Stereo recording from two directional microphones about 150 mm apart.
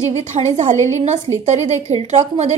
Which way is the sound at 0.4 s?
50° right (ahead or behind).